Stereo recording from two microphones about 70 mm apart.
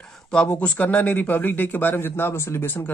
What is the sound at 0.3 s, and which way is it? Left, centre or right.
A man's voice, centre.